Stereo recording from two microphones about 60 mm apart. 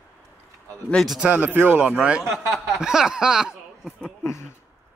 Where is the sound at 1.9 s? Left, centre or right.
Centre.